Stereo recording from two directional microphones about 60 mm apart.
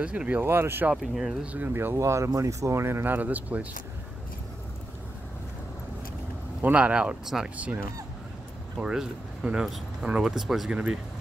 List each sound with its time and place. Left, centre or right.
0.0 s speech: right
0.5 s speech: right
0.9 s speech: centre
1.4 s speech: right
1.7 s speech: right
2.0 s speech: right
6.6 s speech: right
7.5 s speech: right
8.7 s speech: centre
10.7 s speech: centre